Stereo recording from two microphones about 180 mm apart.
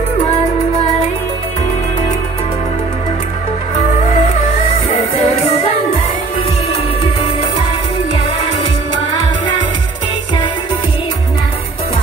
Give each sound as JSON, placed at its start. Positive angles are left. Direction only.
{"t": 3.7, "sound": "music", "side_deg": 40}